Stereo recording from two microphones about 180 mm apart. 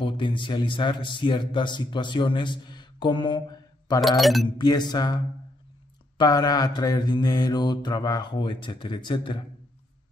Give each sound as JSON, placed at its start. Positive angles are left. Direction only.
{"t": 0.0, "sound": "a man's voice", "side_deg": 25}
{"t": 4.2, "sound": "speech", "side_deg": 0}
{"t": 4.6, "sound": "mantra", "side_deg": 25}